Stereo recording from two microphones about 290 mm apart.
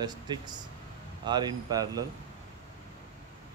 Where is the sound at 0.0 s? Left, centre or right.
Centre.